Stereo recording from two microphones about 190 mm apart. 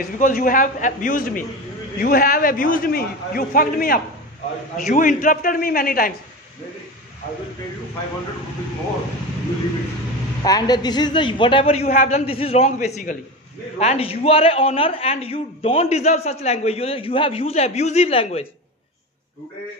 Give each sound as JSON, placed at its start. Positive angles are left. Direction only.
{"t": 0.2, "sound": "a man's voice", "side_deg": 45}
{"t": 10.4, "sound": "a man's voice", "side_deg": 20}
{"t": 11.9, "sound": "a man's voice", "side_deg": 40}